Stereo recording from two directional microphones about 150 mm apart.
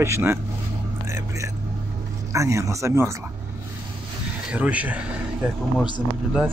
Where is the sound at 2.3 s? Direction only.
20° right (ahead or behind).